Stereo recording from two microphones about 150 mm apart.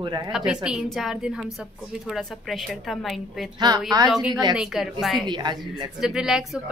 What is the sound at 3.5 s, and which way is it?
A woman's voice, 25° right (ahead or behind).